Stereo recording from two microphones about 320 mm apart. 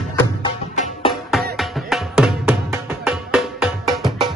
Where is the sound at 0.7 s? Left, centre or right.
Left.